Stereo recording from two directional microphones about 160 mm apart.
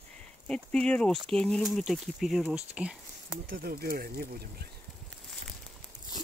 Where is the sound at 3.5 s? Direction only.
65° right (ahead or behind).